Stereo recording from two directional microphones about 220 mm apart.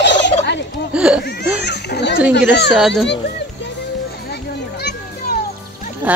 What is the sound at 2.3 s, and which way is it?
Speech, 50° left (ahead or behind).